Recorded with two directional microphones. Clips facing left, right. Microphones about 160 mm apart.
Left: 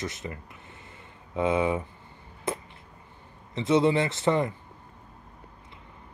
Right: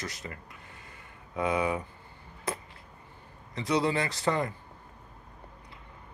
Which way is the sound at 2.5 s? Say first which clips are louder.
Left 4 dB; 20° left (ahead or behind).